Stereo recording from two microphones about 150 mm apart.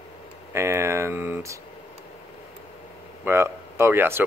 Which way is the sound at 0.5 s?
20° right (ahead or behind).